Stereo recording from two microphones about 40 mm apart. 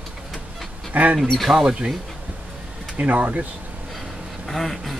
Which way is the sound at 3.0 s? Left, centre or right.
Right.